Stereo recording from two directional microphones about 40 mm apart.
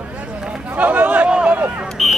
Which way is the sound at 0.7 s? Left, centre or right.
Right.